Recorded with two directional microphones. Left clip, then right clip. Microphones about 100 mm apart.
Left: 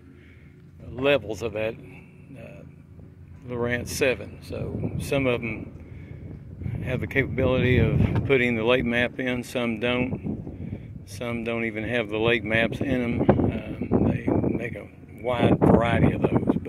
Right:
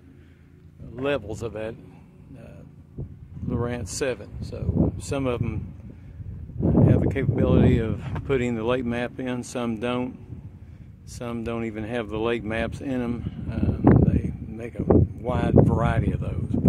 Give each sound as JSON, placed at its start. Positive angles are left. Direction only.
{"t": 0.9, "sound": "speech", "side_deg": -20}
{"t": 3.4, "sound": "speech", "side_deg": -25}
{"t": 6.8, "sound": "speech", "side_deg": -20}
{"t": 11.1, "sound": "speech", "side_deg": -30}